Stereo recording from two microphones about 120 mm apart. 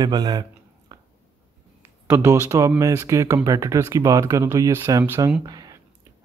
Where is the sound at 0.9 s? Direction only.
30° right (ahead or behind).